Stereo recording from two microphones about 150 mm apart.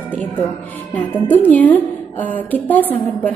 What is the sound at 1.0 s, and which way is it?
A woman's voice, 10° left (ahead or behind).